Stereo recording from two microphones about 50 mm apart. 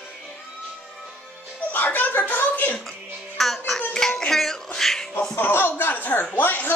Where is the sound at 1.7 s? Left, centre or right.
Left.